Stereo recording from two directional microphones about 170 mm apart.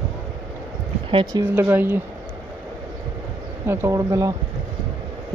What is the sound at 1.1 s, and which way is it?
Speech, 25° right (ahead or behind).